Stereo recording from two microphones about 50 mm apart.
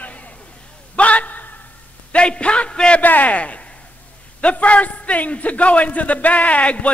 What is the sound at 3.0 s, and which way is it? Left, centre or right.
A man's voice, left.